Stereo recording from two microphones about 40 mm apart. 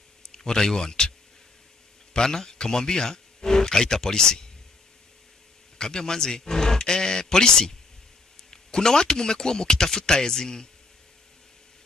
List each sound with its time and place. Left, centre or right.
0.3 s speech: centre
2.1 s speech: centre
5.8 s speech: centre